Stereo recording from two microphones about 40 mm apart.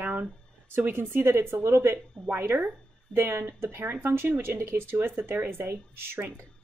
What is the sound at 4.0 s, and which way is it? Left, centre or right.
A woman's voice, right.